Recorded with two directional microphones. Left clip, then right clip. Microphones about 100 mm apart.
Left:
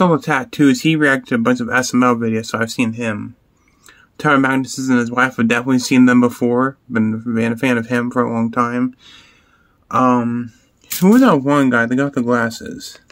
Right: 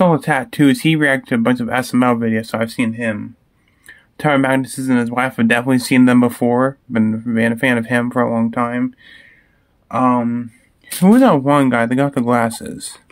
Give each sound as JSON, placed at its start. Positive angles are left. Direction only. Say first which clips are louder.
{"t": 0.0, "sound": "speech", "louder": "right 1 dB", "side_deg": -10}
{"t": 2.6, "sound": "speech", "louder": "even", "side_deg": 15}
{"t": 4.2, "sound": "speech", "louder": "even", "side_deg": -5}
{"t": 8.4, "sound": "speech", "louder": "left 1 dB", "side_deg": 5}
{"t": 11.1, "sound": "speech", "louder": "right 1 dB", "side_deg": -15}